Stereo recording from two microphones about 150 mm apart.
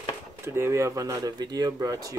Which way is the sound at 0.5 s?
15° right (ahead or behind).